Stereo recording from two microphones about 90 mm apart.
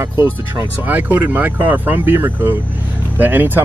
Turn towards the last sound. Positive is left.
turn(degrees=-20)  # may be behind; listen again after turning